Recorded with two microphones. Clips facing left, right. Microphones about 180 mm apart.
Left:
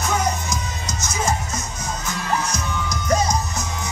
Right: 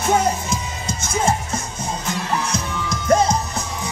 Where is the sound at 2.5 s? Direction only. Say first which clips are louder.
Right 2 dB; 30° right (ahead or behind).